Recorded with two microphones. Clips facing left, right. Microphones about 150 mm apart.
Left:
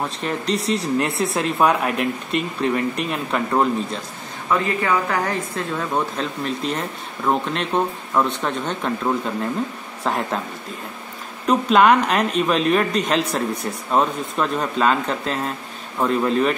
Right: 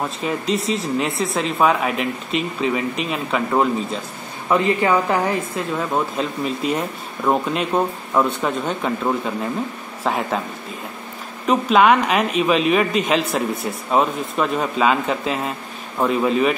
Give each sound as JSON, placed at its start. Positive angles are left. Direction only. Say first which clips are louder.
{"t": 0.2, "sound": "speech", "louder": "right 2 dB", "side_deg": -5}
{"t": 4.5, "sound": "speech", "louder": "right 3 dB", "side_deg": -20}
{"t": 5.8, "sound": "speech", "louder": "right 2 dB", "side_deg": -5}
{"t": 11.4, "sound": "speech", "louder": "even", "side_deg": 0}